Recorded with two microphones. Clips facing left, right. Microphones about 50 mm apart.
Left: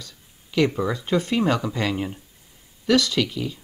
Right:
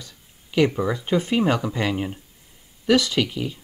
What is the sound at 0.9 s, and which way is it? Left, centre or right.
Speech, centre.